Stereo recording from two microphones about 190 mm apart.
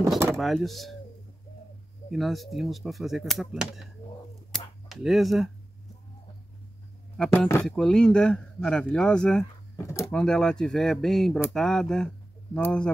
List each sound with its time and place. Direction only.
0.4 s a man's voice: centre (ahead or behind)
2.0 s a man's voice: centre (ahead or behind)
4.5 s cap gun: centre (ahead or behind)
7.2 s a man's voice: 10° left (ahead or behind)
9.8 s speech: 15° left (ahead or behind)
10.1 s a man's voice: 5° left (ahead or behind)